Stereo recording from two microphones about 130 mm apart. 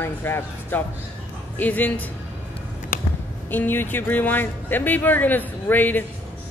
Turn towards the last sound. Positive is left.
turn(degrees=15)  # may be behind; listen again after turning